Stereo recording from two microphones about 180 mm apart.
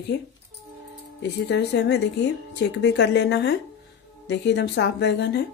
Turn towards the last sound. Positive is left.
turn(degrees=70)  # may be behind; listen again after turning